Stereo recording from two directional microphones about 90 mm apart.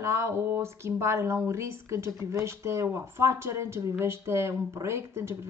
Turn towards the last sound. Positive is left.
turn(degrees=-35)  # may be behind; listen again after turning